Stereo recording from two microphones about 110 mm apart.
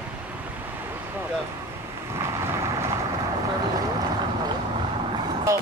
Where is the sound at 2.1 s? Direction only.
25° right (ahead or behind).